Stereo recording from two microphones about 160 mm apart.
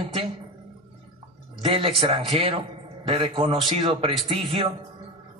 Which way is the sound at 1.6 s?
35° right (ahead or behind).